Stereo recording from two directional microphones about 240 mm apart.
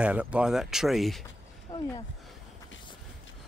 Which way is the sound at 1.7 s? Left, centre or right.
Centre.